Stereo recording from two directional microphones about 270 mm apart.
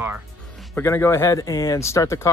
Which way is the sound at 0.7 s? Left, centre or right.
Centre.